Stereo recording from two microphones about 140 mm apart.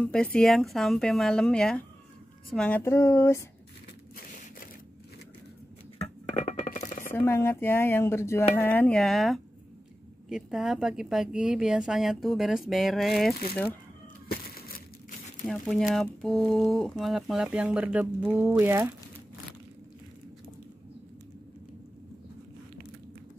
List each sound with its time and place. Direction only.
0.0 s a woman's voice: 10° left (ahead or behind)
2.8 s speech: 20° left (ahead or behind)
6.3 s music: 60° left (ahead or behind)
7.1 s a woman's voice: 15° left (ahead or behind); by 13.3 s centre (ahead or behind)
15.4 s a woman's voice: centre (ahead or behind); by 18.9 s 15° right (ahead or behind)